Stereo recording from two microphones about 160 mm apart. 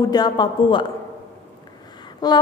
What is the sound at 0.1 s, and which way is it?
Speech, 25° left (ahead or behind).